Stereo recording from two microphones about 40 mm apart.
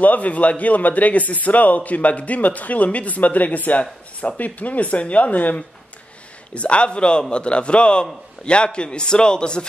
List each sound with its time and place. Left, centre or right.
0.0 s a man's voice: left
6.5 s a man's voice: left